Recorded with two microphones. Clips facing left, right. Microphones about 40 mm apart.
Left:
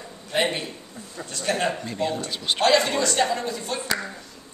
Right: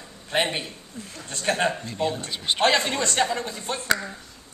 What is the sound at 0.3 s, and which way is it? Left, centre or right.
Speech, right.